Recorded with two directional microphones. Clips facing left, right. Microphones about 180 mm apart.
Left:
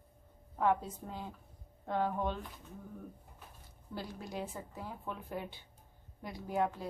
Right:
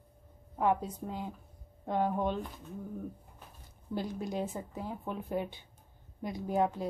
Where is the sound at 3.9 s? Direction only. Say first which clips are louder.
Right 7 dB; 20° right (ahead or behind).